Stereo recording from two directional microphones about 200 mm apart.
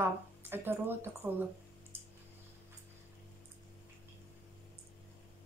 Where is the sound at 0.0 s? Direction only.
10° right (ahead or behind).